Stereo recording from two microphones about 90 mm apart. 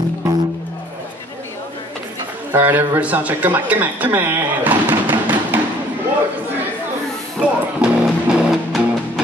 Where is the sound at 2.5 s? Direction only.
25° right (ahead or behind).